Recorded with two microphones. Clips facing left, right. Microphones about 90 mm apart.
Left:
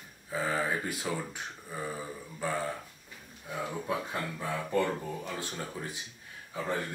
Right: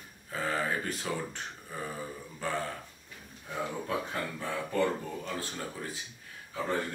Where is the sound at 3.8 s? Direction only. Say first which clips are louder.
Even; 15° left (ahead or behind).